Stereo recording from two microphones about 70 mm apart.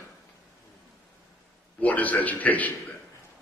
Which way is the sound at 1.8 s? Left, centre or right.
Left.